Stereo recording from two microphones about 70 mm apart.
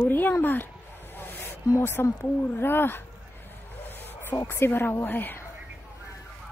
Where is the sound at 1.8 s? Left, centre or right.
Left.